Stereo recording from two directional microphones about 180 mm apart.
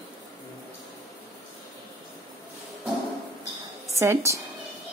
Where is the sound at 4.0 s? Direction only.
15° right (ahead or behind).